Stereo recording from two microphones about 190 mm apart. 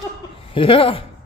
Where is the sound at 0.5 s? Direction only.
30° left (ahead or behind).